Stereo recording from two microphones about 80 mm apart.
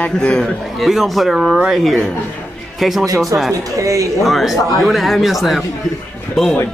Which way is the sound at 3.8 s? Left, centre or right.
Right.